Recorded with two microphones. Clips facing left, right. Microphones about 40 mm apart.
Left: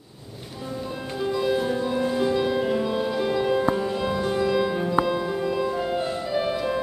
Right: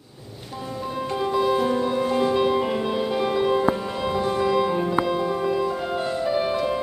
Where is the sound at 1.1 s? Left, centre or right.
Centre.